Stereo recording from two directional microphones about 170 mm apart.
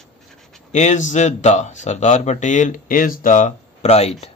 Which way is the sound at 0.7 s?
45° left (ahead or behind).